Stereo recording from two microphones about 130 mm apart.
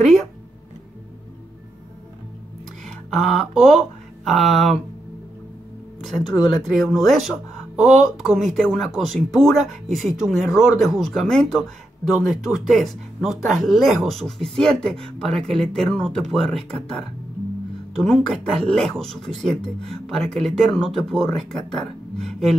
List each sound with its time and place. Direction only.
0.0 s a sound: centre (ahead or behind)
2.8 s speech: centre (ahead or behind)
6.3 s speech: centre (ahead or behind)